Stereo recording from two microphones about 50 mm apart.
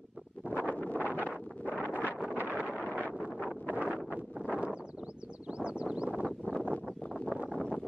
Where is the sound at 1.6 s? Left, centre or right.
Left.